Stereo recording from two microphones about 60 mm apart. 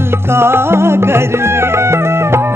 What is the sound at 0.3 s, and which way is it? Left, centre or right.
Music, right.